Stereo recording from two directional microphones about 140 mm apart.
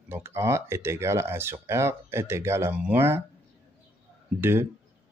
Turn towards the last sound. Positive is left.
turn(degrees=-15)  # may be behind; listen again after turning